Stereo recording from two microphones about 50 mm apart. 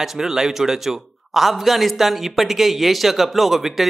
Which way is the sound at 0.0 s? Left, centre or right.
Centre.